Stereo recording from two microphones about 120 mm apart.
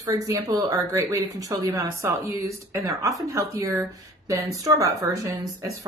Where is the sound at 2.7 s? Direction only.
25° right (ahead or behind).